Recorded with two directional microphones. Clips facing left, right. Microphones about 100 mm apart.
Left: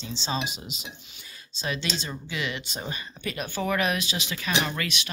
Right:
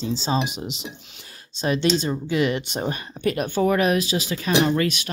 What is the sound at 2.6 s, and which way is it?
Speech, 60° right (ahead or behind).